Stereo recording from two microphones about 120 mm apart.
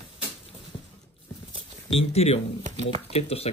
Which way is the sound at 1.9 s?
55° left (ahead or behind).